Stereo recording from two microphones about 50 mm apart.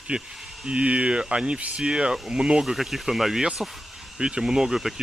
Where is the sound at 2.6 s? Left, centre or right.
Centre.